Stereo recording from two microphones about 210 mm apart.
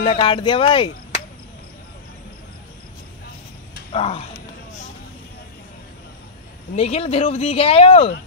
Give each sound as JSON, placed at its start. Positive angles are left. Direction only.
{"t": 0.0, "sound": "speech", "side_deg": 25}
{"t": 3.9, "sound": "speech", "side_deg": 30}
{"t": 6.7, "sound": "speech", "side_deg": 30}